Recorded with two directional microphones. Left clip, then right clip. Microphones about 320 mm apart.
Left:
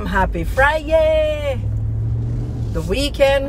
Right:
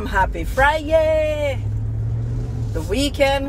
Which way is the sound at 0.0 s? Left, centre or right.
Centre.